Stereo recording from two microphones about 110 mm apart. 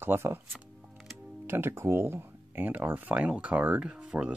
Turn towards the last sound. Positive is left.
turn(degrees=-5)  # may be behind; listen again after turning